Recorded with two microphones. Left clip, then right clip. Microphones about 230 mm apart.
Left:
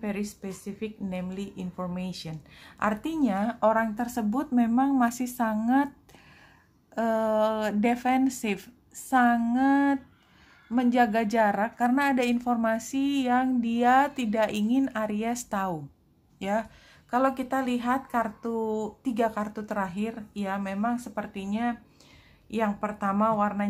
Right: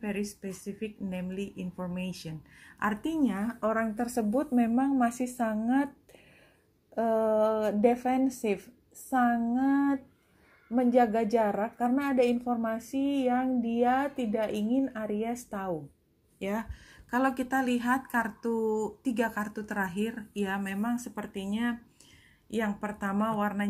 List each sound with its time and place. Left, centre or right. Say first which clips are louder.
0.0 s speech: left 1 dB; centre
4.0 s a woman's voice: even; left
7.2 s a woman's voice: left 1 dB; centre
16.3 s speech: left 6 dB; centre